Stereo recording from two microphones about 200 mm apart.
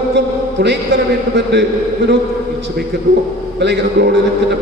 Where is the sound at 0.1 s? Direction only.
60° right (ahead or behind).